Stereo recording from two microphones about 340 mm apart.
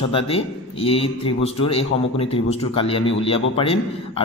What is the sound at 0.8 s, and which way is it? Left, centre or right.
Speech, centre.